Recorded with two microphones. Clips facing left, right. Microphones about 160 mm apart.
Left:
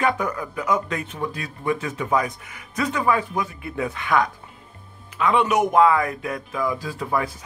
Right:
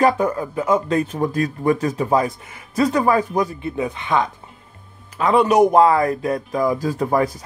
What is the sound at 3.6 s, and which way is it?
Speech, 20° right (ahead or behind).